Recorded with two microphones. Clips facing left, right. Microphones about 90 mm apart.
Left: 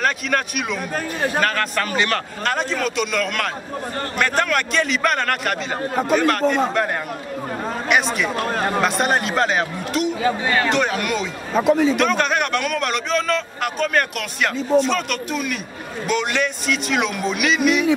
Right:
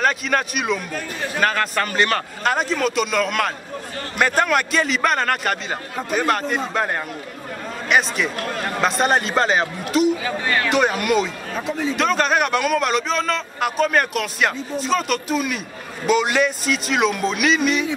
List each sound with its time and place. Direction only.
0.0 s a man's voice: centre (ahead or behind)
0.9 s a man's voice: 45° left (ahead or behind)
1.4 s a man's voice: centre (ahead or behind)
8.8 s a man's voice: centre (ahead or behind)
11.5 s speech: 70° left (ahead or behind)
12.0 s a man's voice: centre (ahead or behind)